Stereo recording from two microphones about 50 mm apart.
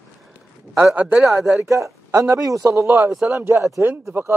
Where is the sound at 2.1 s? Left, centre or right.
Right.